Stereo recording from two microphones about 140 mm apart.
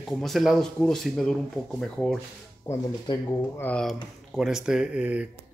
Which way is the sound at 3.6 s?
5° left (ahead or behind).